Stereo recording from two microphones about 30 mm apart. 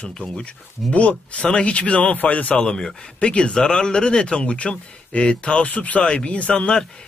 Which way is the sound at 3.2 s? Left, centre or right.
Left.